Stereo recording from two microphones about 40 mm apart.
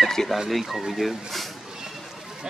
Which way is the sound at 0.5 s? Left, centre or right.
Centre.